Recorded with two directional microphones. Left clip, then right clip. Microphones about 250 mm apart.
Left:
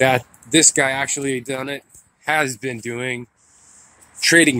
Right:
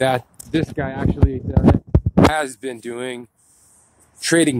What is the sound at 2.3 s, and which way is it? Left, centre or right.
Speech, centre.